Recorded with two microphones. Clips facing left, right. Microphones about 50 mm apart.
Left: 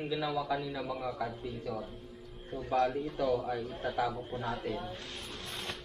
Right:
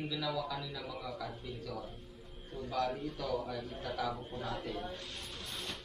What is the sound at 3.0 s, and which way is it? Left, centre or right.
A man's voice, left.